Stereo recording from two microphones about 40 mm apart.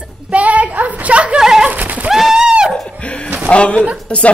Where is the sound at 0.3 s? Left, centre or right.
Right.